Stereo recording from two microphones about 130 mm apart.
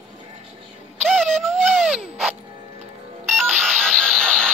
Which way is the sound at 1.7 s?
5° right (ahead or behind).